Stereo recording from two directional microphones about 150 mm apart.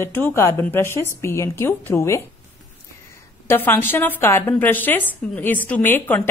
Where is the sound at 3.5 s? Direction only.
15° left (ahead or behind).